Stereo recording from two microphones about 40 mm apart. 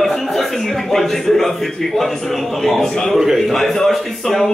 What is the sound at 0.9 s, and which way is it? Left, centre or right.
Speech, centre.